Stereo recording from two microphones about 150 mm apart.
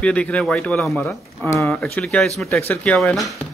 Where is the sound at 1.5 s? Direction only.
20° left (ahead or behind).